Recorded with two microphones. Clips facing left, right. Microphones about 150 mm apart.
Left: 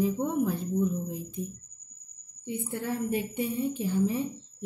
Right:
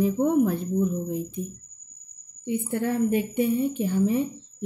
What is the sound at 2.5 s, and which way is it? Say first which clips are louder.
A woman's voice: right 6 dB; 65° right (ahead or behind).